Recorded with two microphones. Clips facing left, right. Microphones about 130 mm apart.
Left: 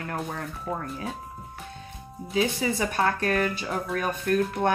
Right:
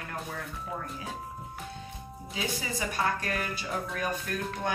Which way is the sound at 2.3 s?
60° left (ahead or behind).